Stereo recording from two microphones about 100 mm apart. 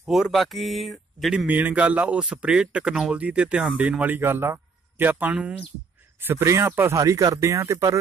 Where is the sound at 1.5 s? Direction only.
15° right (ahead or behind).